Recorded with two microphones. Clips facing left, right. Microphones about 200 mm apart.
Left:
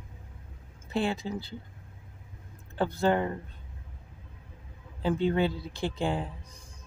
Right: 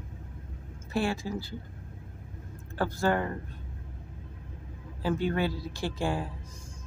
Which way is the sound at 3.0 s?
20° left (ahead or behind).